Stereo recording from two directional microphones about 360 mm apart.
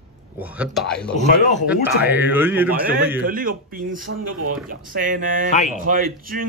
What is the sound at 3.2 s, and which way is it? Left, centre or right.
Speech, right.